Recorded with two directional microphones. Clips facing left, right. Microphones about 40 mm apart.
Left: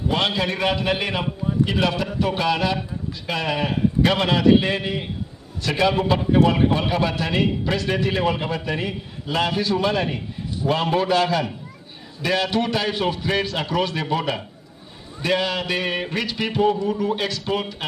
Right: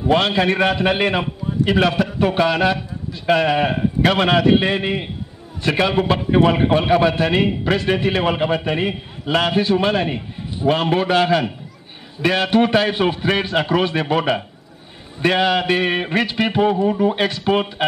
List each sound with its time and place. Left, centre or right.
0.1 s a man's voice: right